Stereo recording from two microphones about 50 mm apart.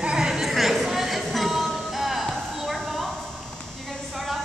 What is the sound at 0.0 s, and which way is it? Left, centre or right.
Chatter, centre.